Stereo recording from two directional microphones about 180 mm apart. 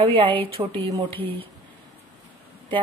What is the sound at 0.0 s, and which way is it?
A woman's voice, 30° right (ahead or behind).